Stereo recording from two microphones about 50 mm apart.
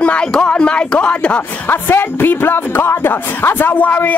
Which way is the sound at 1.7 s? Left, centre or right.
Left.